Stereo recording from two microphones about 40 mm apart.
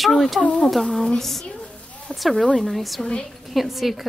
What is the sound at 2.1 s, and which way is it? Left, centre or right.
Speech, left.